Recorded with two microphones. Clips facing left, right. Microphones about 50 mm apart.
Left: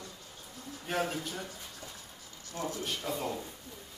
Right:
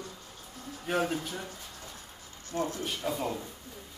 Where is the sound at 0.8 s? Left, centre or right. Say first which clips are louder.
Right 3 dB; centre.